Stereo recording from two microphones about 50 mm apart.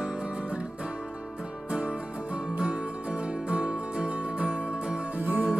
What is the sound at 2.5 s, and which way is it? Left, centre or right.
Music, right.